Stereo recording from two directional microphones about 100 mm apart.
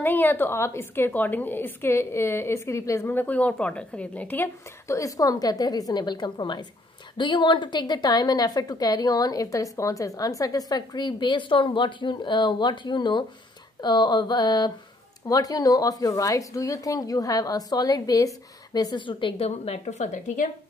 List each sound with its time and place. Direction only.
0.0 s a woman's voice: 20° left (ahead or behind)
4.8 s a woman's voice: 35° left (ahead or behind)
19.0 s a woman's voice: 55° left (ahead or behind)
19.4 s speech: 90° left